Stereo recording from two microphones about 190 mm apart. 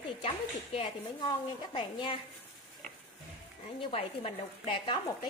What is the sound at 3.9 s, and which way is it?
Speech, 30° left (ahead or behind).